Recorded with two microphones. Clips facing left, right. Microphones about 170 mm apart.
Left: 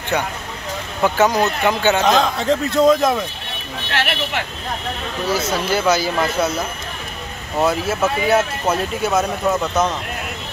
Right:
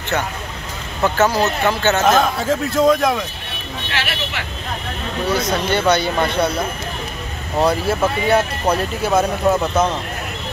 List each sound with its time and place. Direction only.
1.0 s speech: 15° left (ahead or behind)
2.0 s speech: 5° right (ahead or behind)
3.9 s speech: 55° left (ahead or behind)
5.3 s speech: 5° left (ahead or behind)
7.6 s speech: centre (ahead or behind)